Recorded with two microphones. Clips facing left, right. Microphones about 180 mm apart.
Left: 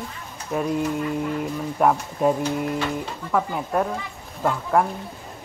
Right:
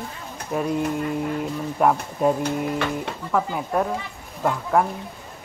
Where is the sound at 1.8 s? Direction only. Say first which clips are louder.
Even; centre (ahead or behind).